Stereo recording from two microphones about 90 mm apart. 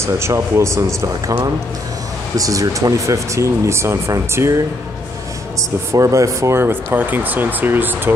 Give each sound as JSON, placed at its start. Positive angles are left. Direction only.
{"t": 0.0, "sound": "speech", "side_deg": -30}
{"t": 5.9, "sound": "speech", "side_deg": -35}